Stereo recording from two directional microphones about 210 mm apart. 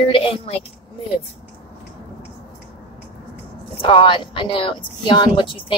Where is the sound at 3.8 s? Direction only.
25° left (ahead or behind).